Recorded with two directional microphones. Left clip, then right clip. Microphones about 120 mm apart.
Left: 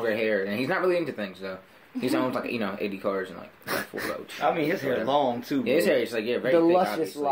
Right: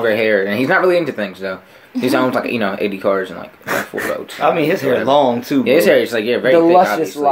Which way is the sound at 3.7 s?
45° left (ahead or behind).